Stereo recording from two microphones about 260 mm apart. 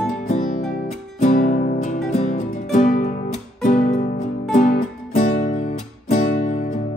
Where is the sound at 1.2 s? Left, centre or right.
Left.